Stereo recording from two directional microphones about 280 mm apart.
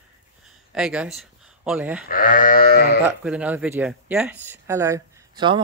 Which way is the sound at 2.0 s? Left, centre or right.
Left.